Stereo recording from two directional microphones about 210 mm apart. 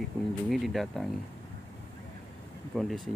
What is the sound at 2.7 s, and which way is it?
Speech, centre (ahead or behind).